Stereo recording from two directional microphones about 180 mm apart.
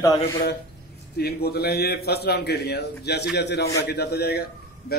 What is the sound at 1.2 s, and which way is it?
A man's voice, 60° left (ahead or behind).